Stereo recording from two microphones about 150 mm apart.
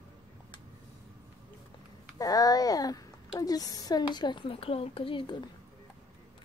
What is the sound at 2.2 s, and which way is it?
A child's voice, 25° left (ahead or behind).